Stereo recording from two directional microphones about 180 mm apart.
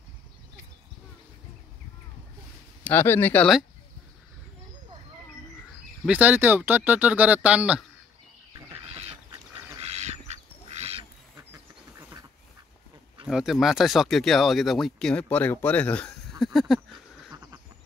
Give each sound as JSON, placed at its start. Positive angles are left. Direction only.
{"t": 2.8, "sound": "speech", "side_deg": 10}
{"t": 6.0, "sound": "speech", "side_deg": -10}
{"t": 9.8, "sound": "duck", "side_deg": -35}
{"t": 13.3, "sound": "speech", "side_deg": 0}
{"t": 16.5, "sound": "a sound", "side_deg": 0}